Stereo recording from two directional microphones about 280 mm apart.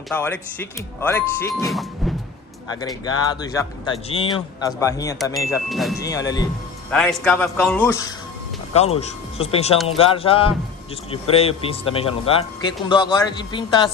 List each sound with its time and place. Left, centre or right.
0.1 s speech: centre
2.8 s speech: centre
5.7 s a man's voice: centre
5.9 s a man's voice: centre
8.7 s speech: left